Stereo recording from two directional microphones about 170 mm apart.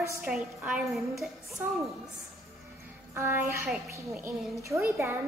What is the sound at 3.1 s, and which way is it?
Child singing, 10° right (ahead or behind).